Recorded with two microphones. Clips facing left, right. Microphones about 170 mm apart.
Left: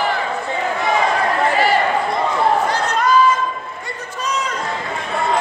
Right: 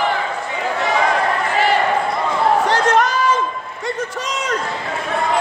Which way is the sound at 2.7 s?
90° right.